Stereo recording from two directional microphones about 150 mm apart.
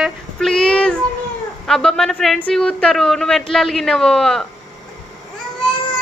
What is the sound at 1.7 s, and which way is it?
Speech, 5° left (ahead or behind).